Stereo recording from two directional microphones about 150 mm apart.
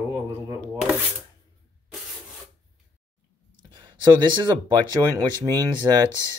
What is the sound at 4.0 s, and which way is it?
Speech, 30° right (ahead or behind).